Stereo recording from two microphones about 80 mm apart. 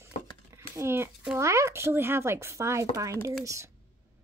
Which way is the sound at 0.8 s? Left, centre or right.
Right.